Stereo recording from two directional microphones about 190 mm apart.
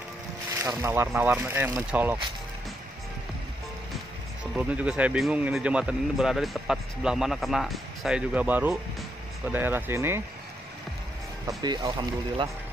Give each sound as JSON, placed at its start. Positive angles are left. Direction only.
{"t": 0.5, "sound": "speech", "side_deg": -15}
{"t": 4.6, "sound": "speech", "side_deg": -5}
{"t": 11.4, "sound": "speech", "side_deg": -20}